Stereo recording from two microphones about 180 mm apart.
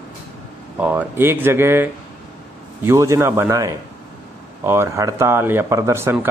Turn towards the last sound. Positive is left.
turn(degrees=-15)  # may be behind; listen again after turning